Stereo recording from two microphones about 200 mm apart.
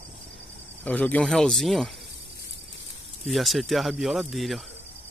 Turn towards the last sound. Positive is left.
turn(degrees=0)  # may be behind; listen again after turning